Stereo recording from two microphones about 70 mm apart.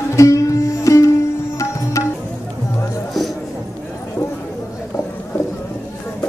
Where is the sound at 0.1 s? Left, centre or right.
Left.